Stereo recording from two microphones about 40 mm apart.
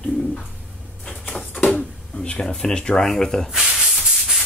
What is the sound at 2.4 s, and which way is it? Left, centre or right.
Speech, centre.